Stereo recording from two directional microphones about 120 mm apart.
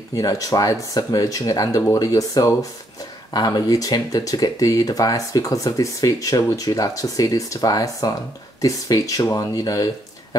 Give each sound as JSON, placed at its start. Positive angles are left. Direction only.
{"t": 0.1, "sound": "speech", "side_deg": 30}